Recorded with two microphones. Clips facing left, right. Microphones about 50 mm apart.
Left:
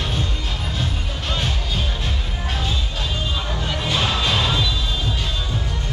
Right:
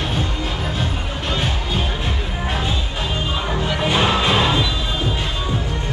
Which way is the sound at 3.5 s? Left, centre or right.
Right.